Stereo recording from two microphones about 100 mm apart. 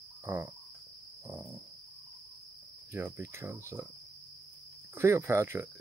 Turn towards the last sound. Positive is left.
turn(degrees=-30)  # may be behind; listen again after turning